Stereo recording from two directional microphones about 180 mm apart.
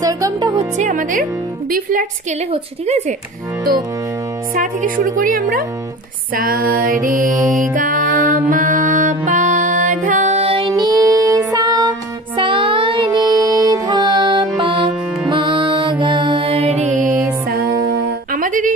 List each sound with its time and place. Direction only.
0.0 s speech: 20° right (ahead or behind)
0.7 s music: 45° right (ahead or behind)
2.5 s a woman's voice: 40° right (ahead or behind)
4.6 s music: 50° right (ahead or behind); by 10.7 s 35° right (ahead or behind)
10.7 s music: 20° right (ahead or behind); by 17.2 s 45° right (ahead or behind)
17.5 s music: 55° right (ahead or behind)